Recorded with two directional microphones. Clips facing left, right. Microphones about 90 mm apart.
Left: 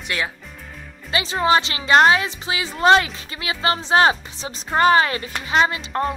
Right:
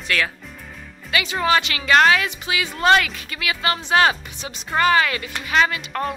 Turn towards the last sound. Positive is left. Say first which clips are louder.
# left 2 dB
turn(degrees=30)  # may be behind; listen again after turning